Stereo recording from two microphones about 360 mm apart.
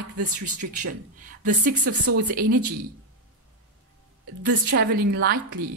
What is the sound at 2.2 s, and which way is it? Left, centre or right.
Speech, right.